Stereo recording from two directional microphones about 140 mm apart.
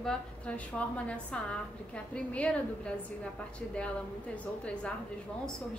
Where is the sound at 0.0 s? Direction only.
10° left (ahead or behind).